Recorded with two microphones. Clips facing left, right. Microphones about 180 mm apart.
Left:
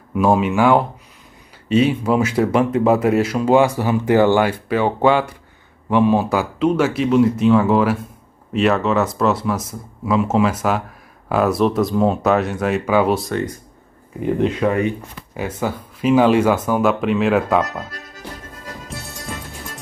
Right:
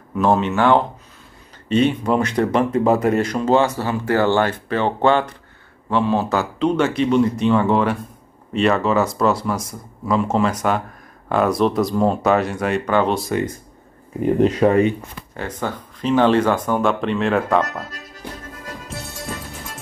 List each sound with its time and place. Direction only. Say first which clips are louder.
0.1 s speech: left 2 dB; 10° left (ahead or behind)
14.6 s speech: right 4 dB; 35° right (ahead or behind)
15.3 s speech: left 3 dB; 10° left (ahead or behind)